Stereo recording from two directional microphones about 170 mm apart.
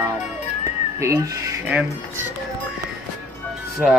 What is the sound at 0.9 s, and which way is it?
Speech, 15° right (ahead or behind).